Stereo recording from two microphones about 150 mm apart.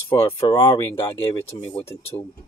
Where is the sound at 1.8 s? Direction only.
15° left (ahead or behind).